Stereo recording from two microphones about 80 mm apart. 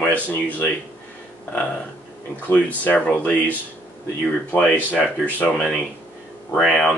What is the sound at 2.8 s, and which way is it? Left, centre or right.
A man's voice, left.